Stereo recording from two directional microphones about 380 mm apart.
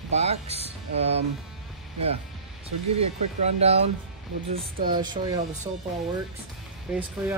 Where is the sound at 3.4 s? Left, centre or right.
Centre.